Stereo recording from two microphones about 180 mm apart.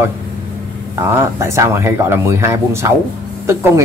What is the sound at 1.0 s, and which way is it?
A woman's voice, 15° right (ahead or behind).